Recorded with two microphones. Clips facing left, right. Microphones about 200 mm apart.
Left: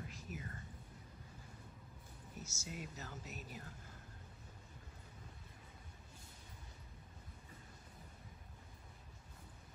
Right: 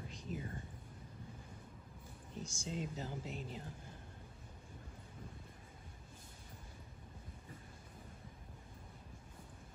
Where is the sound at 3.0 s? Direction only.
25° right (ahead or behind).